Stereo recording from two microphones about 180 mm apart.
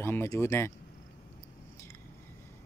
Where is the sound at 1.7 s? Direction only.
15° left (ahead or behind).